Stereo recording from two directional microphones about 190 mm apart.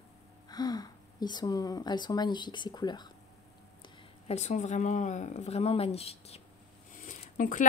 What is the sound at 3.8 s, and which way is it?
Speech, 35° left (ahead or behind).